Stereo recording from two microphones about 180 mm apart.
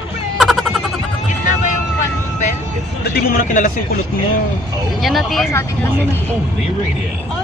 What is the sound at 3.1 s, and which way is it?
Speech, 50° left (ahead or behind).